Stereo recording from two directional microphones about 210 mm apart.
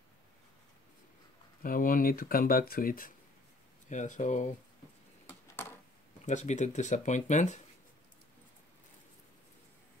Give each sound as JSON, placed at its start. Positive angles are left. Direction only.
{"t": 1.6, "sound": "speech", "side_deg": 40}
{"t": 6.2, "sound": "speech", "side_deg": 35}